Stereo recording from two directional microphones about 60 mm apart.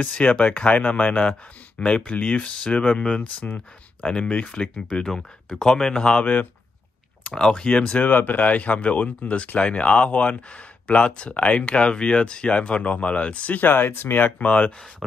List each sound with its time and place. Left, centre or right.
0.0 s speech: centre
5.0 s speech: centre
8.1 s speech: left